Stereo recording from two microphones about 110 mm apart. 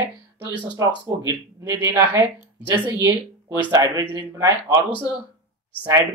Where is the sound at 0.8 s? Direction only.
40° right (ahead or behind).